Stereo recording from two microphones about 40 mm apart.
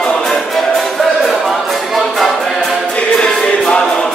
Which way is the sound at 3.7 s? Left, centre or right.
Left.